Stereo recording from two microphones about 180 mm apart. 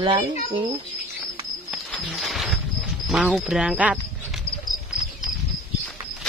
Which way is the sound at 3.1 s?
Centre (ahead or behind).